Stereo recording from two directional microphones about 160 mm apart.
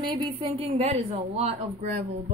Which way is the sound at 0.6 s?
40° right (ahead or behind).